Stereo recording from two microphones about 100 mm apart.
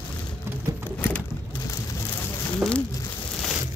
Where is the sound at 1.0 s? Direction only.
15° left (ahead or behind).